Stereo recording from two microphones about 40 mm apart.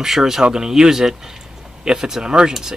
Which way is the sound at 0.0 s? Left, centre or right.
Centre.